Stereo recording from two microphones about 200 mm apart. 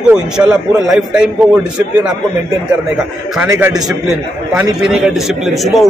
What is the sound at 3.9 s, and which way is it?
A man's voice, 5° right (ahead or behind).